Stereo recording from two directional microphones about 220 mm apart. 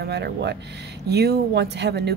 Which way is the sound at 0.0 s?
50° right (ahead or behind).